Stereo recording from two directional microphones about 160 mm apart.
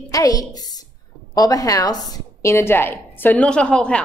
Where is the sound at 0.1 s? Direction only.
20° left (ahead or behind).